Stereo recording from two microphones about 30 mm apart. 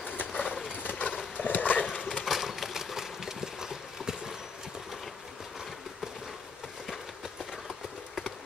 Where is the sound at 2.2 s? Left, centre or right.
Centre.